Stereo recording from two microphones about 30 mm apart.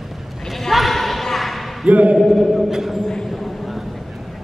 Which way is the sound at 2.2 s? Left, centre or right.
Centre.